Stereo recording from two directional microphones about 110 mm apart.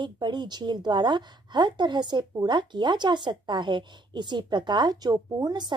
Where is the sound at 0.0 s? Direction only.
45° right (ahead or behind).